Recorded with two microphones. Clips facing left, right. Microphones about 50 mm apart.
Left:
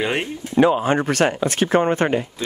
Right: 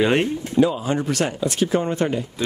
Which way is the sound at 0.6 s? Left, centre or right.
Left.